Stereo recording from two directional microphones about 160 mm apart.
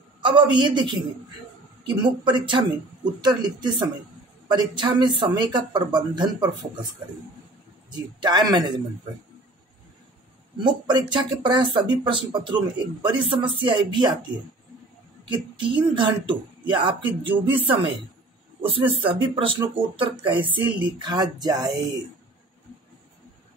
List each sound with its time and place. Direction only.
0.2 s speech: 30° right (ahead or behind)
8.2 s speech: 25° right (ahead or behind)
10.6 s speech: 30° right (ahead or behind)
15.5 s speech: 30° right (ahead or behind)